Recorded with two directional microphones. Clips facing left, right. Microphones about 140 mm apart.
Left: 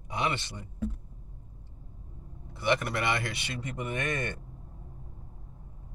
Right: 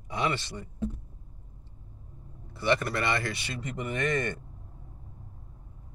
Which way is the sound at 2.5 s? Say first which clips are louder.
Right 1 dB; 20° left (ahead or behind).